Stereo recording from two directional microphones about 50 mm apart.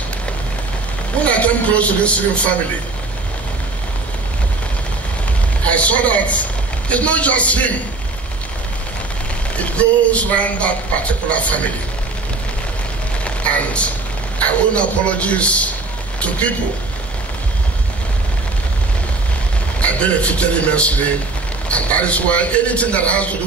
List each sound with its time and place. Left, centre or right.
1.2 s speech: left
5.7 s speech: left
9.6 s speech: left
13.2 s rain on surface: left
14.4 s speech: left
19.8 s speech: left